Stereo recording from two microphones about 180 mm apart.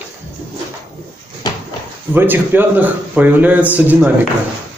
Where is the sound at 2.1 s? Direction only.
10° right (ahead or behind).